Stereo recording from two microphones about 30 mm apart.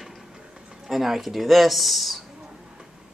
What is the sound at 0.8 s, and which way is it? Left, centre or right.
Speech, centre.